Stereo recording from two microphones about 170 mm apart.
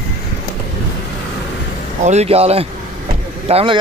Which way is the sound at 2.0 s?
40° right (ahead or behind).